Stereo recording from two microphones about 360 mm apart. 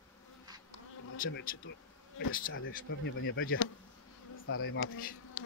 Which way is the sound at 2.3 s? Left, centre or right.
Left.